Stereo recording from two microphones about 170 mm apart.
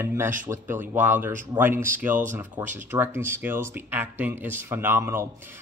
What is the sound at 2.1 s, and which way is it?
Speech, 50° right (ahead or behind).